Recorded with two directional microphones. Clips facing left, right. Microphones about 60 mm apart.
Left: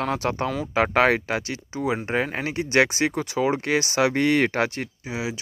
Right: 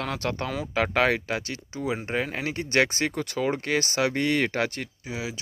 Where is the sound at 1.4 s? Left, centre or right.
Left.